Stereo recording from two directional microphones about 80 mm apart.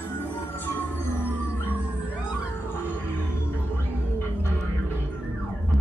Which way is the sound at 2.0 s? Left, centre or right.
Centre.